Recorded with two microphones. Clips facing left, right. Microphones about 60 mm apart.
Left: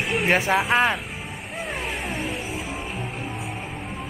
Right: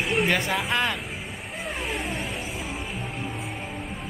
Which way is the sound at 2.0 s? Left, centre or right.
Centre.